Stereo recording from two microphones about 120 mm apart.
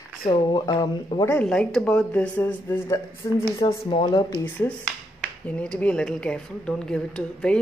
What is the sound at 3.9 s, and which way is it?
Speech, 45° left (ahead or behind).